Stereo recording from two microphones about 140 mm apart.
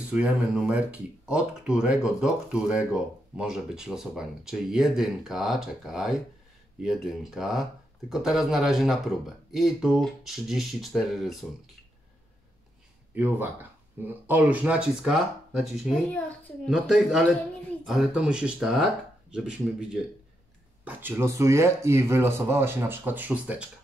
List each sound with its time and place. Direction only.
0.1 s speech: 10° right (ahead or behind)
13.1 s speech: 15° right (ahead or behind)